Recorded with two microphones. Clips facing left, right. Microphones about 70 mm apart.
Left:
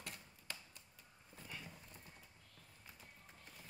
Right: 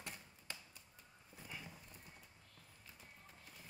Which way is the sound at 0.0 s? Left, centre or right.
Right.